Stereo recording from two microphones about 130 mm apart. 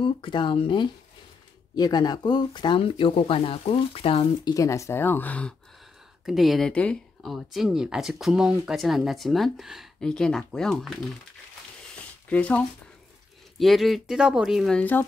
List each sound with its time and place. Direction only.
0.0 s speech: 40° left (ahead or behind)
4.6 s speech: 25° left (ahead or behind)
6.2 s speech: centre (ahead or behind)
7.3 s speech: centre (ahead or behind)
12.3 s speech: 10° left (ahead or behind)
14.8 s speech: 15° left (ahead or behind)